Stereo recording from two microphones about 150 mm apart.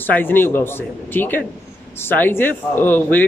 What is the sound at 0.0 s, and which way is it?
Speech, 15° left (ahead or behind).